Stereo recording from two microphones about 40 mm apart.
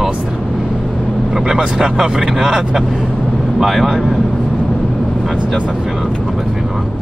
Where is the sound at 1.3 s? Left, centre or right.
Centre.